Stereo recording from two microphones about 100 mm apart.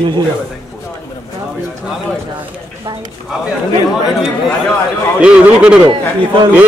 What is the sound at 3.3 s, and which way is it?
Speech, 5° right (ahead or behind).